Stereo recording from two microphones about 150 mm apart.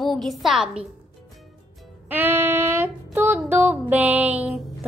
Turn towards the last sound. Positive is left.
turn(degrees=-5)  # may be behind; listen again after turning